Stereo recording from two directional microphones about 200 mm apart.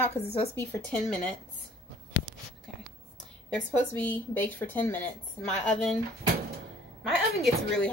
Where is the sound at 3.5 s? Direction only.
10° left (ahead or behind).